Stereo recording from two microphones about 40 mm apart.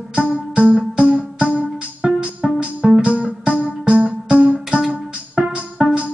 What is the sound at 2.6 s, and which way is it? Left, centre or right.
Music, right.